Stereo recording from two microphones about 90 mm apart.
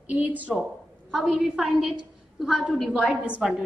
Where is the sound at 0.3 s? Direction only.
15° right (ahead or behind).